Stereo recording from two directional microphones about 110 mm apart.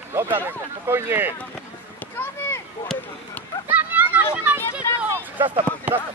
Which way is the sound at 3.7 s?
15° right (ahead or behind).